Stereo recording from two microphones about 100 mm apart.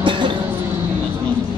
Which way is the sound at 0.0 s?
55° right (ahead or behind).